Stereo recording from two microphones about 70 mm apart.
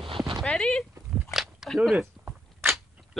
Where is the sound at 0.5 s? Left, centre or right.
Centre.